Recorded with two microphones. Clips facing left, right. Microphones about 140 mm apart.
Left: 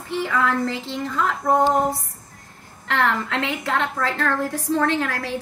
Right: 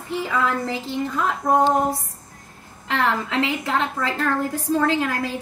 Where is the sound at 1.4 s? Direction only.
15° right (ahead or behind).